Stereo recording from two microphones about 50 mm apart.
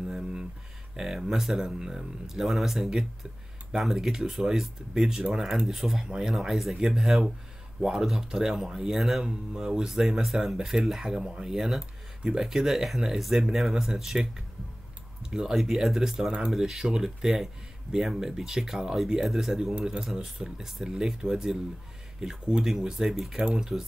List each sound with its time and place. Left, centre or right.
0.9 s speech: centre
15.2 s speech: centre